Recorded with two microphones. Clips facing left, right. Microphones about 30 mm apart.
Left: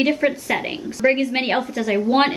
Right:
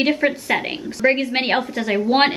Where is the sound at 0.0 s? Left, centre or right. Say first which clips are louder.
Even; centre.